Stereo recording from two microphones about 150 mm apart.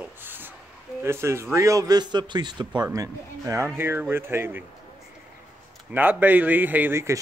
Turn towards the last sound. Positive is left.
turn(degrees=-15)  # may be behind; listen again after turning